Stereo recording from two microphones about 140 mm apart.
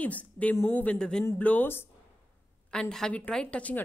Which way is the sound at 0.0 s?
10° left (ahead or behind).